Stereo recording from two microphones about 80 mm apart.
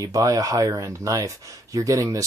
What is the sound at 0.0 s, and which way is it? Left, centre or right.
Speech, right.